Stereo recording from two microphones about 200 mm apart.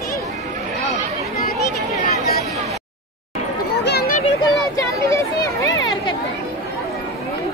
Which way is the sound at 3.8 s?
55° left (ahead or behind).